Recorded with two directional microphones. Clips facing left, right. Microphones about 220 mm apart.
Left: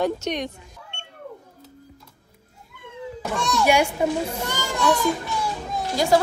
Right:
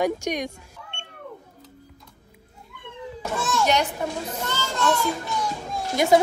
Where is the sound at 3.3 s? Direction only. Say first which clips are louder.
Left 1 dB; centre (ahead or behind).